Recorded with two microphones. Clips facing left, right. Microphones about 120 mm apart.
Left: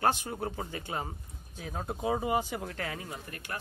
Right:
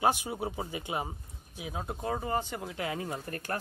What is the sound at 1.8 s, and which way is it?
Speech, 10° left (ahead or behind).